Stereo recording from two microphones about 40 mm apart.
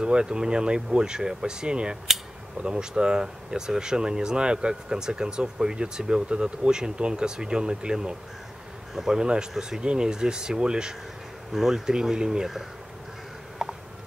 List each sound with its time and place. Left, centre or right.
0.0 s speech: right
11.5 s speech: centre
13.6 s a sound: centre